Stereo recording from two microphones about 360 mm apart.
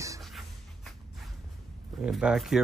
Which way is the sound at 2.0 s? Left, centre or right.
Centre.